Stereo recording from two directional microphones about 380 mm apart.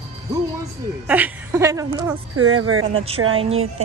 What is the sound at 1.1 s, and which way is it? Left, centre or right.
Speech, centre.